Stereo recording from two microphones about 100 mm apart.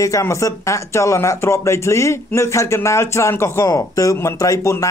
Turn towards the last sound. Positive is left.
turn(degrees=30)  # may be behind; listen again after turning